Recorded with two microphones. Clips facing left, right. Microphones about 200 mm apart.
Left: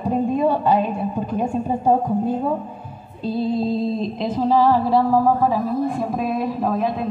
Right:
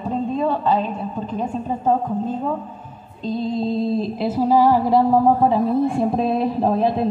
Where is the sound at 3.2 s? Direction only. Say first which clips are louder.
Left 1 dB; 5° left (ahead or behind).